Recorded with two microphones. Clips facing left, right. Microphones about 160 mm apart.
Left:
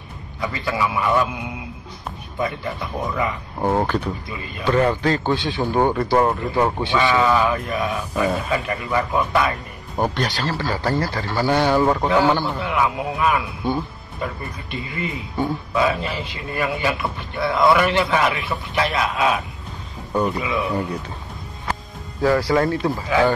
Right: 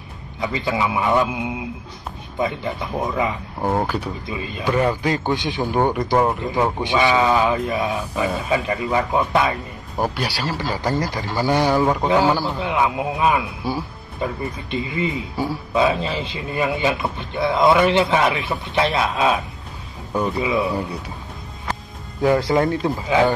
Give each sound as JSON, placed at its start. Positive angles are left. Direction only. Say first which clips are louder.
{"t": 0.4, "sound": "a man's voice", "louder": "right 1 dB", "side_deg": -20}
{"t": 3.6, "sound": "speech", "louder": "left 1 dB", "side_deg": -5}
{"t": 4.3, "sound": "a man's voice", "louder": "even", "side_deg": -20}
{"t": 9.9, "sound": "speech", "louder": "left 1 dB", "side_deg": -5}
{"t": 12.6, "sound": "a man's voice", "louder": "right 3 dB", "side_deg": -20}
{"t": 13.6, "sound": "speech", "louder": "left 4 dB", "side_deg": -5}
{"t": 14.2, "sound": "a man's voice", "louder": "right 4 dB", "side_deg": -20}
{"t": 20.3, "sound": "a man's voice", "louder": "right 3 dB", "side_deg": -30}
{"t": 22.2, "sound": "a man's voice", "louder": "right 1 dB", "side_deg": -20}